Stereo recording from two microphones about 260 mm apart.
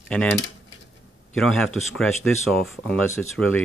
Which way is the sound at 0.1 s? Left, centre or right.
Centre.